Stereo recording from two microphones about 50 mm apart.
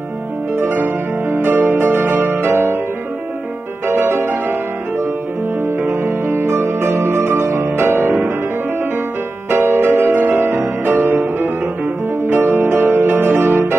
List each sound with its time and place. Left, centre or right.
0.6 s music: right
3.8 s music: right
6.0 s music: right
9.5 s music: right